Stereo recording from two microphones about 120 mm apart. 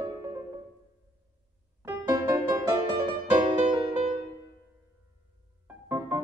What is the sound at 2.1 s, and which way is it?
Music, 30° right (ahead or behind).